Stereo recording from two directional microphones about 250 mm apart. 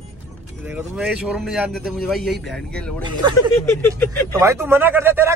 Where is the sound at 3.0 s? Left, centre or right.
Centre.